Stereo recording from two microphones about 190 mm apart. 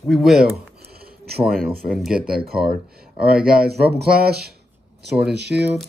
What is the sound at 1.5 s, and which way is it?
Speech, 5° right (ahead or behind).